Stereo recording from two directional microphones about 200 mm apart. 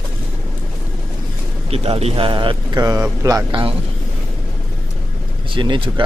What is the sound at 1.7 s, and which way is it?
Speech, 30° right (ahead or behind).